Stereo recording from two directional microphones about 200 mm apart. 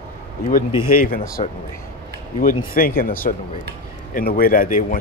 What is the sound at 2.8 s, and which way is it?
Speech, 45° left (ahead or behind).